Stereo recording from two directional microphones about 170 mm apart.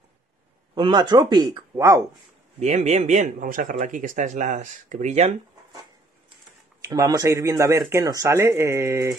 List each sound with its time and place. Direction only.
0.7 s speech: 25° right (ahead or behind)
2.6 s speech: 40° right (ahead or behind)
6.8 s speech: 20° right (ahead or behind)